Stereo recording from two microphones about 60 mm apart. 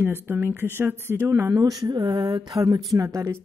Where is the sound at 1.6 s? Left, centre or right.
Right.